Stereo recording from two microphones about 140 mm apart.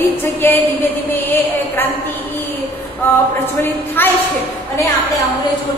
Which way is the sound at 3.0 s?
15° left (ahead or behind).